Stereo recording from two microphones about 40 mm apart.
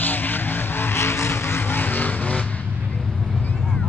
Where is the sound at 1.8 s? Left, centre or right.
Left.